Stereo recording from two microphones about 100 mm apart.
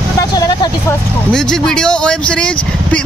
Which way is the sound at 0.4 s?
40° left (ahead or behind).